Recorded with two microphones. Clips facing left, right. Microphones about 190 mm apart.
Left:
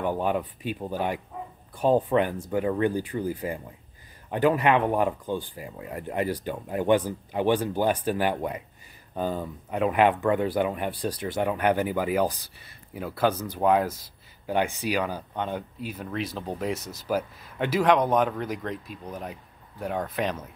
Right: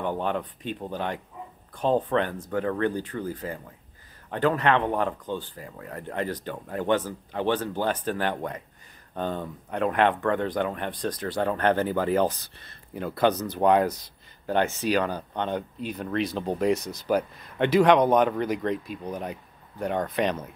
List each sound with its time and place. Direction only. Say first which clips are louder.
0.0 s speech: left 2 dB; 10° left (ahead or behind)
11.2 s speech: even; 20° left (ahead or behind); by 20.3 s 5° left (ahead or behind)